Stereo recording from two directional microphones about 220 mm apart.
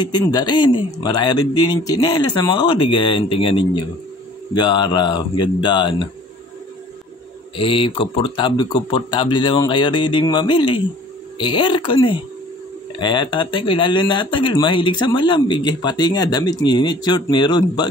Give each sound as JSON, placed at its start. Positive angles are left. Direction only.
{"t": 0.0, "sound": "a man's voice", "side_deg": 20}
{"t": 7.5, "sound": "a man's voice", "side_deg": 25}